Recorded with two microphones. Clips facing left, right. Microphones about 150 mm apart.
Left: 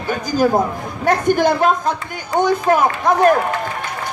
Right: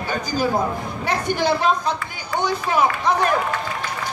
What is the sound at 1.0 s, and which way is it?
Speech, 50° left (ahead or behind).